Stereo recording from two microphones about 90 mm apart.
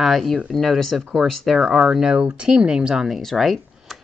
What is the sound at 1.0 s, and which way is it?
Speech, 10° right (ahead or behind).